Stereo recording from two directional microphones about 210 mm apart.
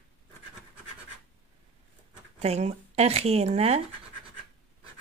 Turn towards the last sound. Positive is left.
turn(degrees=-30)  # may be behind; listen again after turning